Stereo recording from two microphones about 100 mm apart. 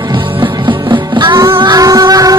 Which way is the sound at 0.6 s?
50° right (ahead or behind).